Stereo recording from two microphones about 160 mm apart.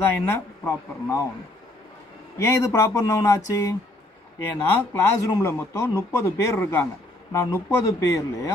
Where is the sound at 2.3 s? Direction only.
15° left (ahead or behind).